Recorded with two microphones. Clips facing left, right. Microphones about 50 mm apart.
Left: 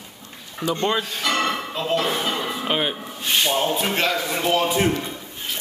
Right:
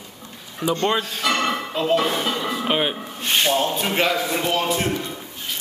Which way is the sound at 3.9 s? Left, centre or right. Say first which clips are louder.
Right 2 dB; centre.